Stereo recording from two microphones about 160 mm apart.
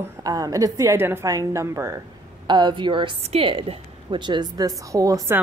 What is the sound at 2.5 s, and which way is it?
A woman's voice, 30° right (ahead or behind).